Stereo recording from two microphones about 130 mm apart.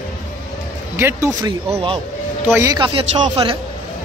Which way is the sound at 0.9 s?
20° right (ahead or behind).